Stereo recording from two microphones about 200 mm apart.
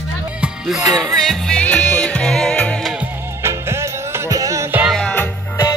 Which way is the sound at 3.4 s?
15° right (ahead or behind).